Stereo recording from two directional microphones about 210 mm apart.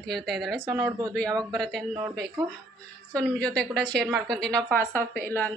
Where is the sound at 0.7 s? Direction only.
15° right (ahead or behind).